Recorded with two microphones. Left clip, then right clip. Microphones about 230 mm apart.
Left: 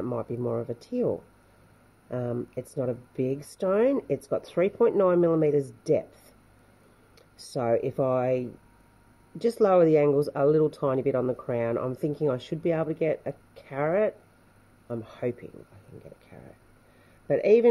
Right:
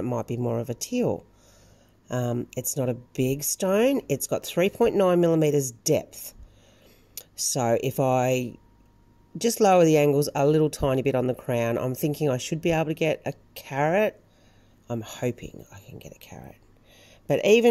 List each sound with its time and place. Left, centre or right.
0.0 s speech: right
7.5 s speech: right